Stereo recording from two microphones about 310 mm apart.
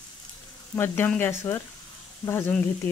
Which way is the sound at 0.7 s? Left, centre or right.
Centre.